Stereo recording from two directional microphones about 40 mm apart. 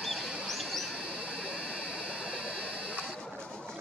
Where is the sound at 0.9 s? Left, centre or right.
Right.